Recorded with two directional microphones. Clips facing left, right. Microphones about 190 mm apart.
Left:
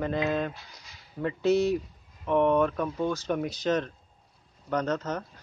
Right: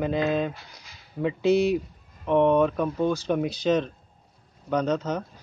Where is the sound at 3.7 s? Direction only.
15° right (ahead or behind).